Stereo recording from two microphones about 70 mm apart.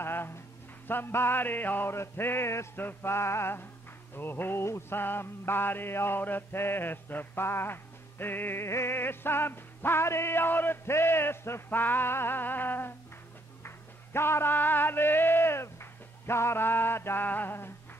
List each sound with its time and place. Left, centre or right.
0.0 s music: left